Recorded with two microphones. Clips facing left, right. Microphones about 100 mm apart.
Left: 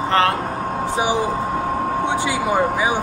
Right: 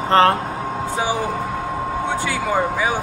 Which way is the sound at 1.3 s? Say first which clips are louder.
Left 3 dB; 45° left (ahead or behind).